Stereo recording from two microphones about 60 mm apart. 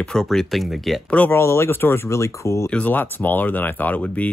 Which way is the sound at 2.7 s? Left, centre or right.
Left.